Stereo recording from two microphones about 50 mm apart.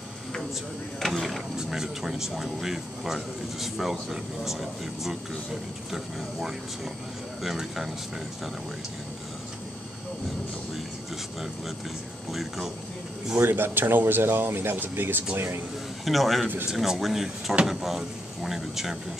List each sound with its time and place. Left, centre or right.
0.9 s speech: centre
12.3 s speech: centre
13.4 s speech: right
15.3 s speech: right
16.1 s speech: centre